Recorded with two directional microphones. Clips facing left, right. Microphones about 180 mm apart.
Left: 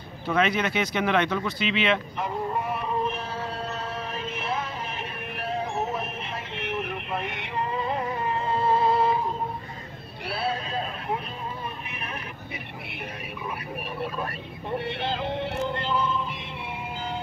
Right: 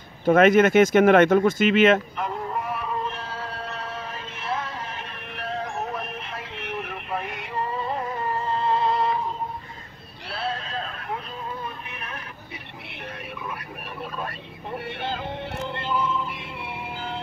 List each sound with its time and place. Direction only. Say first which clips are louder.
0.2 s speech: right 9 dB; 50° right (ahead or behind)
3.0 s music: left 2 dB; centre (ahead or behind)
5.4 s a sound: left 1 dB; 5° left (ahead or behind)
8.5 s music: left 2 dB; 5° left (ahead or behind)
10.3 s a sound: left 1 dB; 10° left (ahead or behind)
15.8 s music: right 4 dB; 10° right (ahead or behind)